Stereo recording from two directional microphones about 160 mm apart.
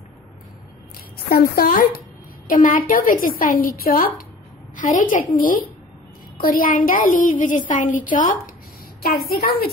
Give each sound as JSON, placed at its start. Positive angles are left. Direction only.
{"t": 1.3, "sound": "a woman's voice", "side_deg": 70}
{"t": 4.7, "sound": "a woman's voice", "side_deg": 55}
{"t": 9.0, "sound": "a woman's voice", "side_deg": 75}